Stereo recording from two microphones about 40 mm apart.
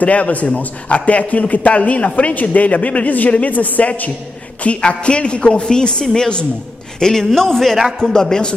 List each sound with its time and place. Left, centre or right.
0.0 s a man's voice: left
4.6 s a man's voice: left